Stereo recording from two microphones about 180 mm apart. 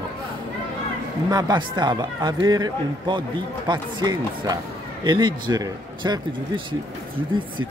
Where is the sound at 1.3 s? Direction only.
25° right (ahead or behind).